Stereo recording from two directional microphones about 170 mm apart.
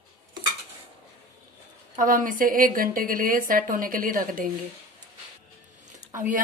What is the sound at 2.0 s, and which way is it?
A woman's voice, 55° right (ahead or behind).